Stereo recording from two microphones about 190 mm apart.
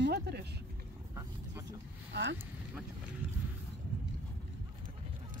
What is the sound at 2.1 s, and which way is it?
Speech, 65° right (ahead or behind).